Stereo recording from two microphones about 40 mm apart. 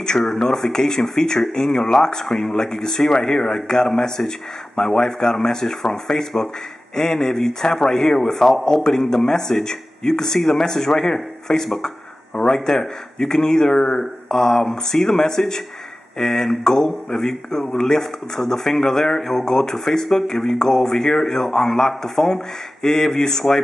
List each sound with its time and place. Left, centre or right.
0.0 s speech: centre